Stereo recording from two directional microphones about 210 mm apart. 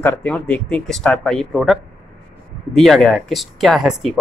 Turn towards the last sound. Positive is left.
turn(degrees=0)  # may be behind; listen again after turning